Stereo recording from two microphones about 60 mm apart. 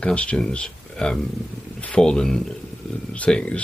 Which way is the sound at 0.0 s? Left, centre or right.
Left.